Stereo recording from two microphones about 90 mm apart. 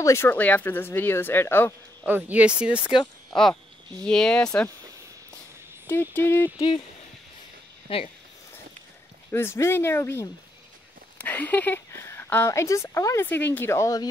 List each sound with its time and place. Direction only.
0.0 s speech: 30° left (ahead or behind)
2.0 s speech: 20° right (ahead or behind)
2.9 s speech: 60° left (ahead or behind)
4.0 s speech: 10° left (ahead or behind)
5.9 s speech: 25° left (ahead or behind)
7.9 s speech: 90° left
9.3 s speech: 30° left (ahead or behind)
11.1 s speech: 20° left (ahead or behind)
11.9 s speech: 30° left (ahead or behind)